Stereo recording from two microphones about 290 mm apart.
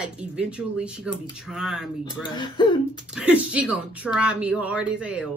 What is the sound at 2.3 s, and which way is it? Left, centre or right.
Speech, centre.